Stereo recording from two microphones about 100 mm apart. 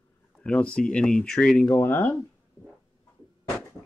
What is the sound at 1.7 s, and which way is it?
Speech, 25° left (ahead or behind).